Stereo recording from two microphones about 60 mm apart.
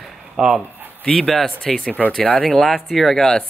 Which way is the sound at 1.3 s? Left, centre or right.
Centre.